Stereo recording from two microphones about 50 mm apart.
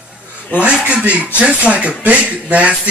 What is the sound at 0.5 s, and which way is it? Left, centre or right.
Speech, right.